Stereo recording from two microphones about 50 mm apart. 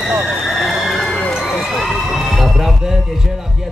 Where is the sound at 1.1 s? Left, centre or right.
Centre.